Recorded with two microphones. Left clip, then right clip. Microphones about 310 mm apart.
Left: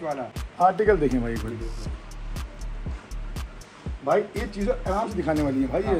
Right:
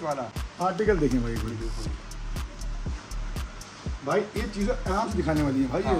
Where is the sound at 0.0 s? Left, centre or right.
Centre.